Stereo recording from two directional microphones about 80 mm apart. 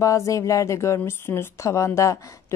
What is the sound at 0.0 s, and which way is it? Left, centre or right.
A woman's voice, left.